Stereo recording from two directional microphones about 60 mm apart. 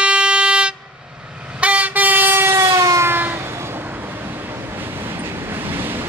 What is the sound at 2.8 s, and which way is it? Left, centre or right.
Train, right.